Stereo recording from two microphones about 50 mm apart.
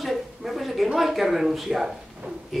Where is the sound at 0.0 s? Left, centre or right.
Centre.